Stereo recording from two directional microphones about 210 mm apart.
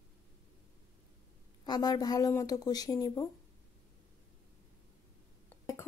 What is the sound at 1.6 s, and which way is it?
Speech, 20° left (ahead or behind).